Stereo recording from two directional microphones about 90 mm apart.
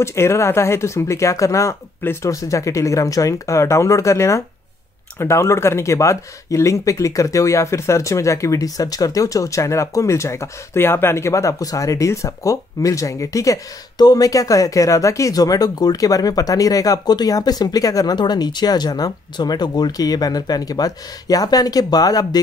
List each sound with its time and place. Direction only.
0.0 s speech: 30° left (ahead or behind); by 22.4 s 45° left (ahead or behind)